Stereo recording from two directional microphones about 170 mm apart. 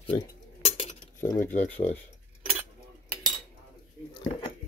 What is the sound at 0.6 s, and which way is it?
Cutlery, 40° left (ahead or behind).